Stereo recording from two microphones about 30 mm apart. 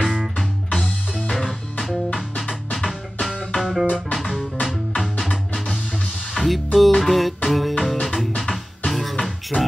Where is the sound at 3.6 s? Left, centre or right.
Centre.